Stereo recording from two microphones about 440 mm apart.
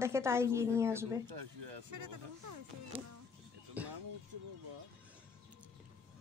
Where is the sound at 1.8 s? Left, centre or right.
Right.